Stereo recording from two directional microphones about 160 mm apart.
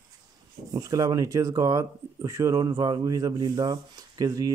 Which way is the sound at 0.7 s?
20° right (ahead or behind).